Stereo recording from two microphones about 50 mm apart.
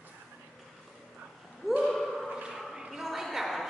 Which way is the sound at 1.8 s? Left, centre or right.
Centre.